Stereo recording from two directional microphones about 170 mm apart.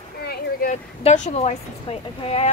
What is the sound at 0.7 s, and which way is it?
Speech, 40° left (ahead or behind).